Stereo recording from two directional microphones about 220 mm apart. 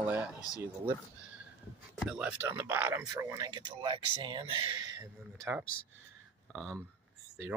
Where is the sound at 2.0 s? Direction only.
5° right (ahead or behind); by 5.0 s 20° right (ahead or behind).